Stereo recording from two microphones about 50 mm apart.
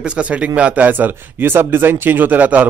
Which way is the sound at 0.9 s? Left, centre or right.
Right.